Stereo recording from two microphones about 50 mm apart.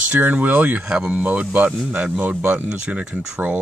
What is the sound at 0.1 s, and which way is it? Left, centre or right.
Speech, right.